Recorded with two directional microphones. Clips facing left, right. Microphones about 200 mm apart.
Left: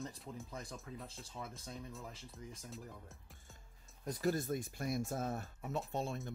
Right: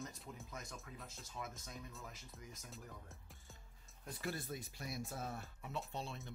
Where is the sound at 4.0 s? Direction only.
40° left (ahead or behind).